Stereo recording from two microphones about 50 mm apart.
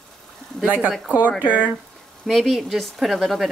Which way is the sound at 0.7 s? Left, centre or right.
Right.